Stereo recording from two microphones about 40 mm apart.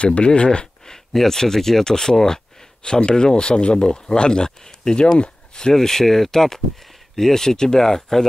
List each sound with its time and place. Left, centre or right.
0.0 s speech: left
0.8 s speech: centre